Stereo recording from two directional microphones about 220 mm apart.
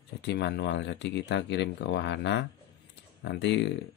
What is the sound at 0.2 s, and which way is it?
Speech, 50° left (ahead or behind).